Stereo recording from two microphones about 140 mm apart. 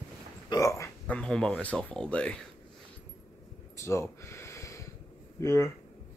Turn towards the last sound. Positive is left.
turn(degrees=20)  # may be behind; listen again after turning